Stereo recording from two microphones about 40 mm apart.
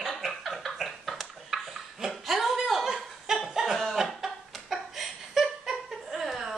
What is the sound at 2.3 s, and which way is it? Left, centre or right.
Chuckle, centre.